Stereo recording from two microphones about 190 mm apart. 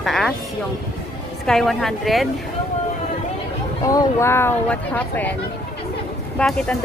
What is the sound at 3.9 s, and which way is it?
Speech, 15° left (ahead or behind).